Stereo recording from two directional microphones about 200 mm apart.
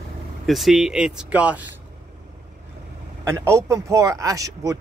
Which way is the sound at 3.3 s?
15° right (ahead or behind).